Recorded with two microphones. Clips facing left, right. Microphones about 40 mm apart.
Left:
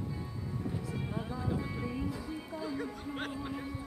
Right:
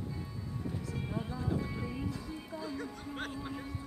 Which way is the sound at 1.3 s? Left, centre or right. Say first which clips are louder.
Even; centre.